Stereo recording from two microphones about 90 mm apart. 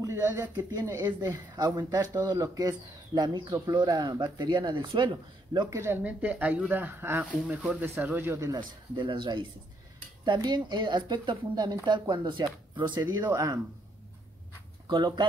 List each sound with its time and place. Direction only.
0.0 s speech: 35° right (ahead or behind); by 5.8 s 50° right (ahead or behind)
5.8 s speech: 30° right (ahead or behind)
6.2 s speech: 20° right (ahead or behind)
8.5 s speech: 60° right (ahead or behind)
13.3 s speech: 35° right (ahead or behind)
14.9 s speech: 55° right (ahead or behind)